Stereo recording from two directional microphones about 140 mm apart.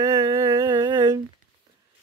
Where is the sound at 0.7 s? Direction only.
35° right (ahead or behind).